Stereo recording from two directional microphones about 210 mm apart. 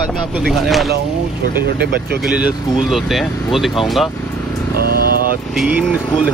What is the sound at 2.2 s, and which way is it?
Speech, 5° right (ahead or behind).